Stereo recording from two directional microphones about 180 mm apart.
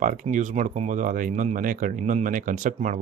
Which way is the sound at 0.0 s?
45° right (ahead or behind).